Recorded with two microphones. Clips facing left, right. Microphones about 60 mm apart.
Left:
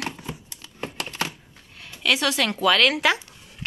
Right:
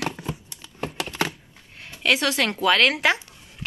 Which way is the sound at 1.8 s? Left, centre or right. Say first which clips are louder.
Right 1 dB; right.